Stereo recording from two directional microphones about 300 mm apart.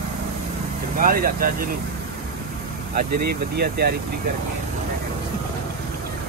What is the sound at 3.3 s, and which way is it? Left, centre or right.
Speech, right.